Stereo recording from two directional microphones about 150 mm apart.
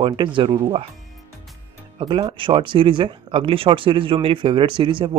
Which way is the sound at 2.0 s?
35° right (ahead or behind).